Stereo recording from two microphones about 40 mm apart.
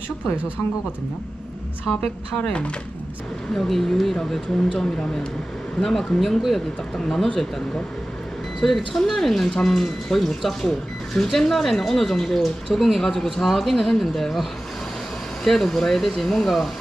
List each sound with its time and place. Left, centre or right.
2.0 s a woman's voice: left
3.5 s speech: centre
8.5 s speech: centre
13.0 s speech: centre
15.4 s speech: centre